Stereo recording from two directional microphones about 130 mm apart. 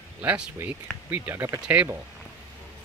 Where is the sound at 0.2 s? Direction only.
15° right (ahead or behind).